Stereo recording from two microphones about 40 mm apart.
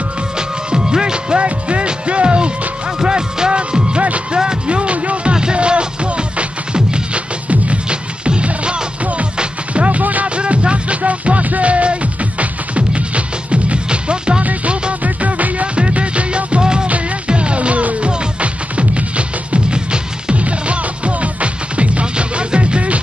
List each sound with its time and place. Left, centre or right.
0.4 s music: centre
5.3 s music: right
10.3 s music: right
14.4 s music: right